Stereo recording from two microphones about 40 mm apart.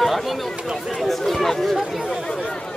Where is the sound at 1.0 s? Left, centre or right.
Centre.